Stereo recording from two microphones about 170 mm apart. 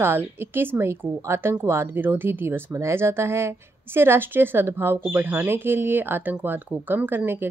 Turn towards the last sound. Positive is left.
turn(degrees=-15)  # may be behind; listen again after turning